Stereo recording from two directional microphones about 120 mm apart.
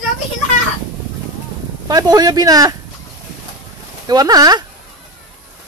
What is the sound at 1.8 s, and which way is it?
Speech, 30° right (ahead or behind).